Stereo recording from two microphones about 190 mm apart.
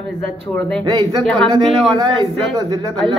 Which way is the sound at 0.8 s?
20° right (ahead or behind).